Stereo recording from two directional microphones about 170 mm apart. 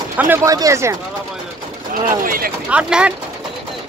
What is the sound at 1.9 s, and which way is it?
Speech, 55° right (ahead or behind).